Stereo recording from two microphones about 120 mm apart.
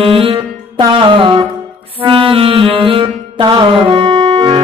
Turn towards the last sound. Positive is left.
turn(degrees=-65)  # may be behind; listen again after turning